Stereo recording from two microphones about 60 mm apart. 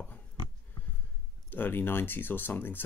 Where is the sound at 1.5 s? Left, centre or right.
Left.